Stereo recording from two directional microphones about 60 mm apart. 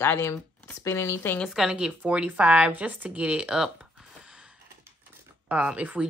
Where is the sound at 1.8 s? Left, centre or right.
Centre.